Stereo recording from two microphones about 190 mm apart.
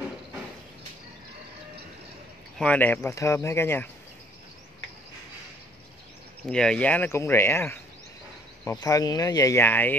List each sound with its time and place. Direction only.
2.6 s speech: 10° left (ahead or behind)
6.4 s speech: 5° left (ahead or behind)